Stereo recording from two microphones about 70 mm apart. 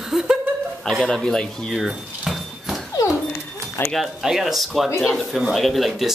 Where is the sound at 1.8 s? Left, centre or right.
Centre.